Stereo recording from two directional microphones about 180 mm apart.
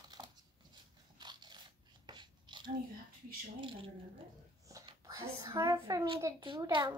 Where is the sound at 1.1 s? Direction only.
25° right (ahead or behind).